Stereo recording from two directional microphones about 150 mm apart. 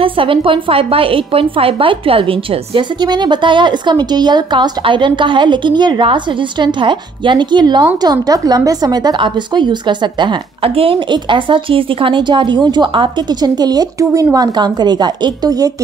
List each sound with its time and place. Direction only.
0.0 s a woman's voice: 35° right (ahead or behind)